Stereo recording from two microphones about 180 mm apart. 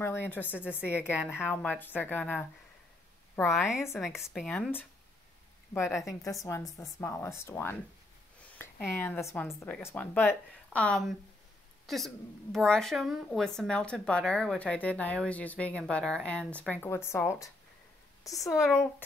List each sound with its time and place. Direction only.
0.0 s speech: 10° left (ahead or behind)
0.6 s a woman's voice: 5° right (ahead or behind)
1.3 s speech: 10° left (ahead or behind)
3.5 s speech: 15° left (ahead or behind)
4.2 s speech: centre (ahead or behind)
5.7 s a woman's voice: 15° left (ahead or behind)
11.8 s a sound: centre (ahead or behind)
12.5 s speech: 5° left (ahead or behind)
18.3 s speech: centre (ahead or behind)
18.7 s speech: 15° left (ahead or behind)